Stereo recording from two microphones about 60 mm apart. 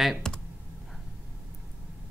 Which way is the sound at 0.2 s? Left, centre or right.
Centre.